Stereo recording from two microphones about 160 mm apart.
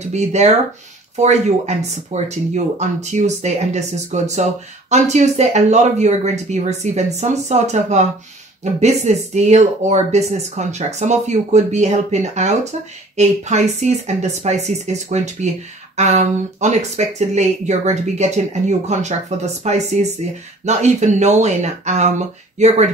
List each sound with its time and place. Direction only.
0.1 s speech: 45° right (ahead or behind)